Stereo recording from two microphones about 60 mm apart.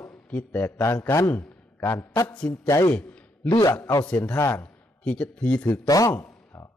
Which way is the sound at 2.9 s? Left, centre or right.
Centre.